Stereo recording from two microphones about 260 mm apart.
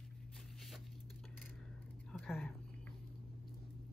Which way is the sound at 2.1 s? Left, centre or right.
Centre.